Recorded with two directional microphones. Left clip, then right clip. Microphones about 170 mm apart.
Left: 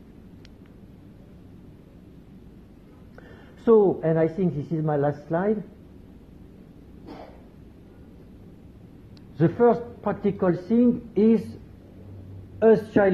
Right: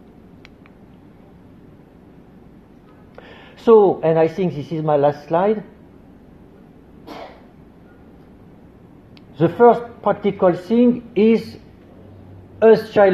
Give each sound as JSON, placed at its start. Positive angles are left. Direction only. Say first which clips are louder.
{"t": 3.2, "sound": "a woman's voice", "louder": "right 8 dB", "side_deg": 5}
{"t": 9.4, "sound": "speech", "louder": "right 7 dB", "side_deg": 0}
{"t": 12.5, "sound": "speech", "louder": "right 7 dB", "side_deg": 0}